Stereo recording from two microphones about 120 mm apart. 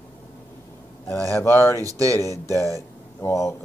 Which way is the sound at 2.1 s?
25° left (ahead or behind).